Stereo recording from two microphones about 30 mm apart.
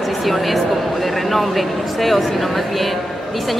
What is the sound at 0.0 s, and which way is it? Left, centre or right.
Speech, centre.